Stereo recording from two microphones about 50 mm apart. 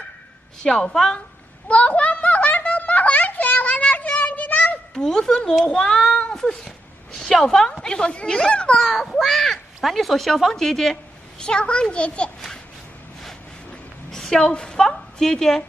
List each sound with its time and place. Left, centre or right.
0.6 s a woman's voice: centre
1.7 s a sound: left
4.9 s a child's voice: centre
6.3 s a woman's voice: centre
8.8 s a child's voice: centre; by 12.3 s left
14.1 s a woman's voice: centre